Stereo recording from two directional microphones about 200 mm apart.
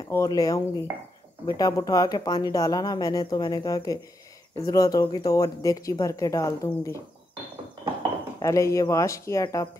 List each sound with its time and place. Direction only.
0.1 s speech: 15° left (ahead or behind)
8.4 s speech: 15° left (ahead or behind)